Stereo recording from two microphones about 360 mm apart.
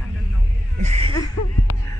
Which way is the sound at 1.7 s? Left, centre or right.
Left.